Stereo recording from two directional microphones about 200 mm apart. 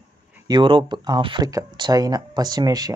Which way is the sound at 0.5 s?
25° right (ahead or behind).